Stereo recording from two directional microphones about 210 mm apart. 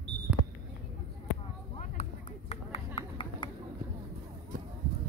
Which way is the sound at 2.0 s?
30° left (ahead or behind).